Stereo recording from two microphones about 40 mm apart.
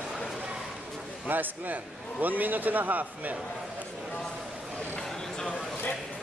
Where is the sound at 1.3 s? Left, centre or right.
Right.